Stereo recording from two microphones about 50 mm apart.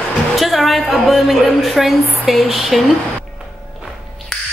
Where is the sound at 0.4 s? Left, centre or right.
Centre.